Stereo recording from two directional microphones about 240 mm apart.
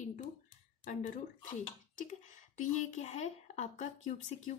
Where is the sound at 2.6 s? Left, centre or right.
Left.